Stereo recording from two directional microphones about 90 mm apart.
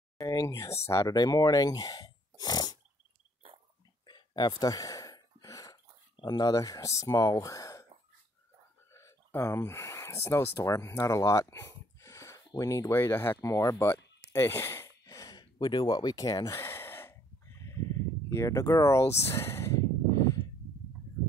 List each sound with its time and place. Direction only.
0.2 s speech: 35° left (ahead or behind)
1.1 s speech: 45° left (ahead or behind)
4.0 s gasp: 55° left (ahead or behind)
6.1 s speech: 50° left (ahead or behind)
8.9 s speech: 35° left (ahead or behind)
13.0 s speech: 25° left (ahead or behind)
13.4 s a sound: 35° left (ahead or behind)